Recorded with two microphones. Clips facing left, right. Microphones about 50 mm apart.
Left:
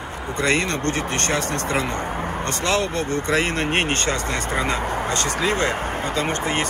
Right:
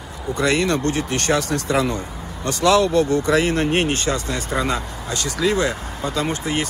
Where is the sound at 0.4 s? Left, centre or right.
Left.